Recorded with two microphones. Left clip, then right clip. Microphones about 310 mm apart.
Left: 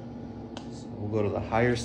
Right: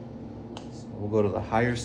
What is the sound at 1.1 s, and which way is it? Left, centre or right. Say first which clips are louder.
Speech: right 3 dB; centre.